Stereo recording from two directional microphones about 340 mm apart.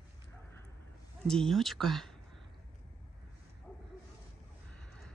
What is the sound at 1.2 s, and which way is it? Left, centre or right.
Speech, centre.